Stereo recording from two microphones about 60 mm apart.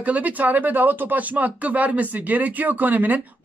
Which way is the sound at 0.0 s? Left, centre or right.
Right.